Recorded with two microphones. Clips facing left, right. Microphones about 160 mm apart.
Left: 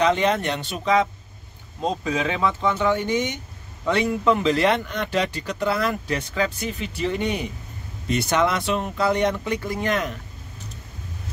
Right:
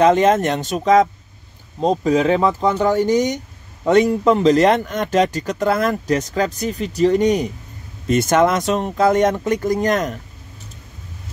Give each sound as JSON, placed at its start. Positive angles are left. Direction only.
{"t": 0.0, "sound": "speech", "side_deg": -45}